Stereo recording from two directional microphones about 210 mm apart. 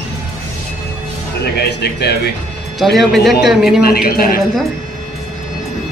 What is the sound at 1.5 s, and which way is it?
Speech, 50° left (ahead or behind).